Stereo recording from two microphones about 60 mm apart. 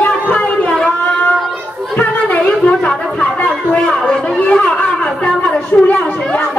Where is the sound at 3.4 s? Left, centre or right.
Centre.